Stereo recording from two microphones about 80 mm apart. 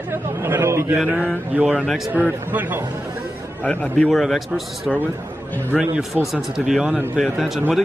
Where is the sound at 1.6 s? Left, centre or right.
Centre.